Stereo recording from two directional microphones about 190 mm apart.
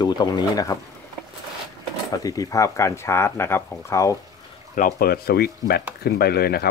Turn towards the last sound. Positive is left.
turn(degrees=55)  # may be behind; listen again after turning